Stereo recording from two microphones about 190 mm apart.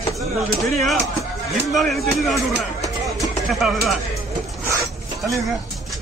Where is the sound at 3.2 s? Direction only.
Centre (ahead or behind).